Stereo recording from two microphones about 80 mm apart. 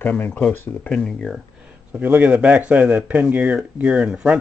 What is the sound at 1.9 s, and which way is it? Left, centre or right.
Speech, right.